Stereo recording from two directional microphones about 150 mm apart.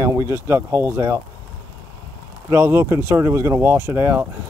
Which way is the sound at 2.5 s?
15° right (ahead or behind).